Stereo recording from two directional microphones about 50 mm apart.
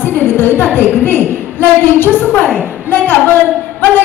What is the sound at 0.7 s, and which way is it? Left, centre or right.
A woman's voice, left.